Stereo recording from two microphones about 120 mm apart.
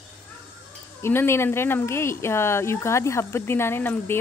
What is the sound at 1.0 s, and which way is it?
A woman's voice, 20° left (ahead or behind).